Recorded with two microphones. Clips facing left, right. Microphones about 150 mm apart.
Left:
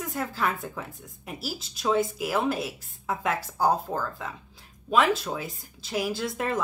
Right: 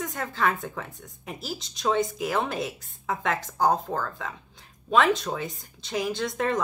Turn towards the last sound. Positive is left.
turn(degrees=5)  # may be behind; listen again after turning